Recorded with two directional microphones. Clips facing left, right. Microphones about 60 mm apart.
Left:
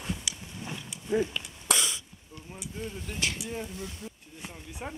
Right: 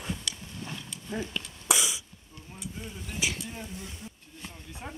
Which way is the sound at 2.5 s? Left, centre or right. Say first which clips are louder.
Left 3 dB; centre.